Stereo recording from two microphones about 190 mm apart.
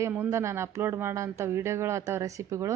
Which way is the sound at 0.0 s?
10° right (ahead or behind).